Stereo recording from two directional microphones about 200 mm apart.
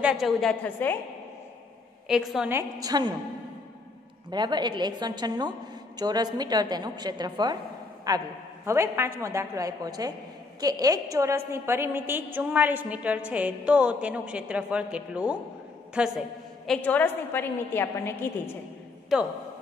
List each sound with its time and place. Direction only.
0.0 s a woman's voice: 5° right (ahead or behind)
2.0 s a woman's voice: centre (ahead or behind)
2.8 s a woman's voice: 20° right (ahead or behind)
4.3 s a woman's voice: 20° right (ahead or behind); by 18.3 s 10° left (ahead or behind)
19.1 s a woman's voice: centre (ahead or behind)